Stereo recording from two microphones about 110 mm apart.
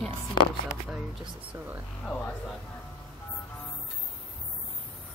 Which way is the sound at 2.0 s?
10° left (ahead or behind).